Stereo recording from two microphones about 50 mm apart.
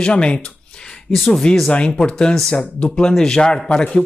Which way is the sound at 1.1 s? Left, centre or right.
Centre.